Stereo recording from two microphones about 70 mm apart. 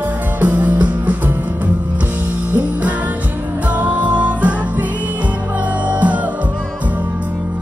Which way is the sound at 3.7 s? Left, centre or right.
Right.